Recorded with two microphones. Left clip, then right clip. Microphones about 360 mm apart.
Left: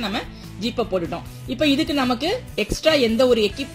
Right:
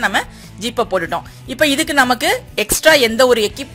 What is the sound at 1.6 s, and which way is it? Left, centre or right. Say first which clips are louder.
A woman's voice: right 7 dB; right.